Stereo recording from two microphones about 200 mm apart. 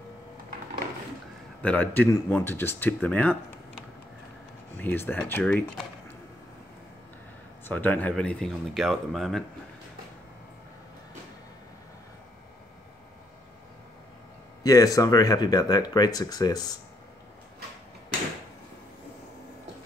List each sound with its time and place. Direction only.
1.6 s speech: 10° left (ahead or behind)
7.6 s speech: 10° left (ahead or behind)
14.6 s speech: 15° left (ahead or behind)